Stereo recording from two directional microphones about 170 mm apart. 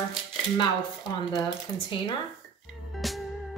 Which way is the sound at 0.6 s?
25° left (ahead or behind).